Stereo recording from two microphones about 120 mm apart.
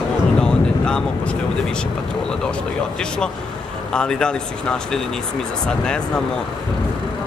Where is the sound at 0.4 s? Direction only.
5° left (ahead or behind).